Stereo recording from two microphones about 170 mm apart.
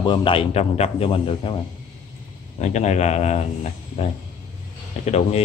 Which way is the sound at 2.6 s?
45° left (ahead or behind).